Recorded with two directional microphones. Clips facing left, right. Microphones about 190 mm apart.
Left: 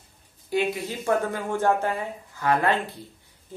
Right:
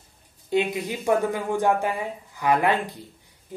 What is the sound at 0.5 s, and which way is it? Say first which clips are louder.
Speech: right 2 dB; 20° right (ahead or behind).